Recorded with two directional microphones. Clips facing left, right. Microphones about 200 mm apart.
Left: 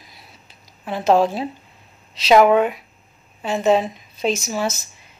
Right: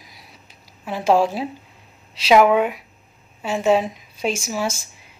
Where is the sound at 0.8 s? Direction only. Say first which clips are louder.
Left 1 dB; 10° right (ahead or behind).